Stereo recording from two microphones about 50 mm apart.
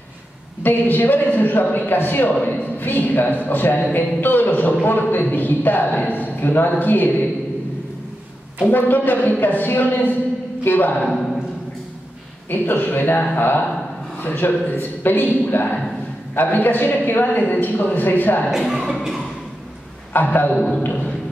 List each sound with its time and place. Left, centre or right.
0.6 s a man's voice: left
8.6 s a man's voice: left
12.4 s a man's voice: left
20.1 s a man's voice: left
20.5 s a man's voice: centre
20.8 s a sound: left